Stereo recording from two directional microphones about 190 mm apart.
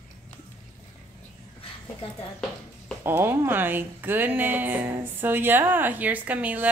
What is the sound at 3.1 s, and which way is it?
Speech, 10° right (ahead or behind).